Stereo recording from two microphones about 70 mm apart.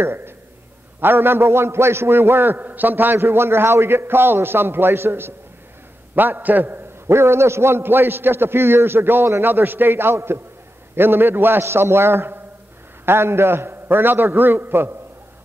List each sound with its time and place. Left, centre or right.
0.0 s a man's voice: right